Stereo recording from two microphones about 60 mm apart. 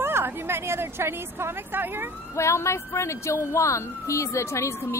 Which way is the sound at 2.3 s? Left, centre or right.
Left.